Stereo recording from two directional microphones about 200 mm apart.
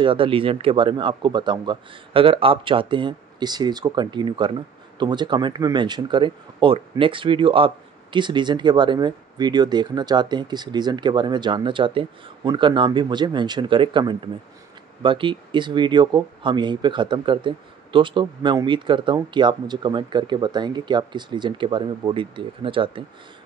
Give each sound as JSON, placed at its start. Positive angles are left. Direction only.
{"t": 0.0, "sound": "speech", "side_deg": -25}